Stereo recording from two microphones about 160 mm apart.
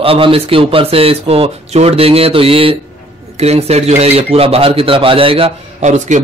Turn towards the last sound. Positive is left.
turn(degrees=-50)  # may be behind; listen again after turning